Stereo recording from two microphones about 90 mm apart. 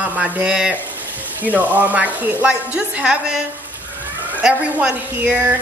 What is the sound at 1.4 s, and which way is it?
Speech, 20° right (ahead or behind).